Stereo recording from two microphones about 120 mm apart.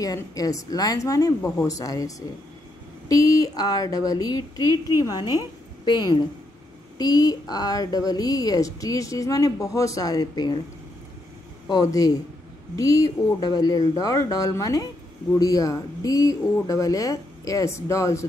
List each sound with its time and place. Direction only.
0.0 s a woman's voice: 30° left (ahead or behind)
11.6 s a woman's voice: 30° left (ahead or behind)